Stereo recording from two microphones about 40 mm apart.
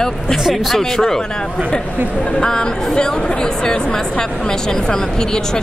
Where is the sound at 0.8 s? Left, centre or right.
Centre.